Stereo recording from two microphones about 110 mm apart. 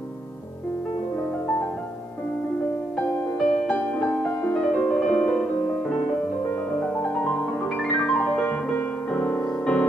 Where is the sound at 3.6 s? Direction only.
10° left (ahead or behind).